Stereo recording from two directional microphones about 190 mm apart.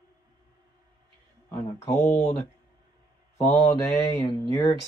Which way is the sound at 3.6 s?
15° left (ahead or behind).